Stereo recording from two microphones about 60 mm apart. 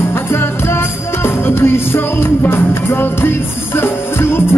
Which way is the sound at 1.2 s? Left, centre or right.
Left.